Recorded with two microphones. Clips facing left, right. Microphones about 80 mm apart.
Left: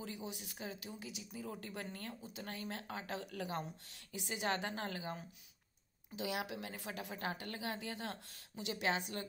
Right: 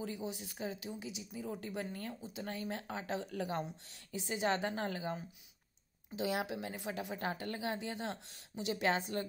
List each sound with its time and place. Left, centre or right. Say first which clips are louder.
0.0 s a woman's voice: right 5 dB; right